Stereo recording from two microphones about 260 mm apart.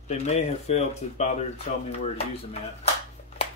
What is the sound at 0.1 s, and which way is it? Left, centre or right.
Speech, left.